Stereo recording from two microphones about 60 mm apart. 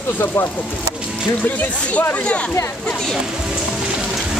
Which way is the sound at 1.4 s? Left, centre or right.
Left.